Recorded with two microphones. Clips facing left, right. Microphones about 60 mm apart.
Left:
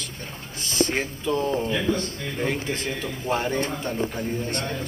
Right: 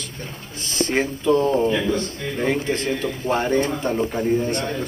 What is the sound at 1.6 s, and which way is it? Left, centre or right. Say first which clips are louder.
Speech: right 4 dB; centre.